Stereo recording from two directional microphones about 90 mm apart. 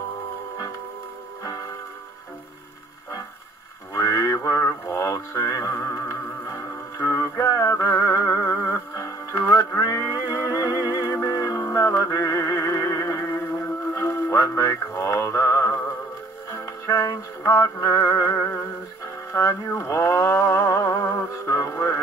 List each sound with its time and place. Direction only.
3.9 s mantra: 30° left (ahead or behind)
13.9 s music: 30° left (ahead or behind)
18.4 s synthetic singing: 25° left (ahead or behind)
19.3 s a sound: 30° left (ahead or behind)